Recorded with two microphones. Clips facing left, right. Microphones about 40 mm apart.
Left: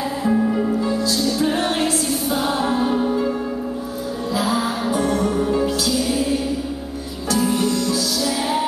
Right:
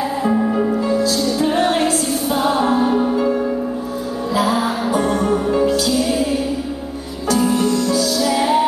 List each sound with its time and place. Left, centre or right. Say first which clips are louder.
0.2 s music: right 1 dB; centre
1.0 s music: right 2 dB; centre
1.4 s music: right 6 dB; centre
4.4 s music: right 4 dB; centre
7.2 s music: right 3 dB; centre
7.9 s music: right 4 dB; centre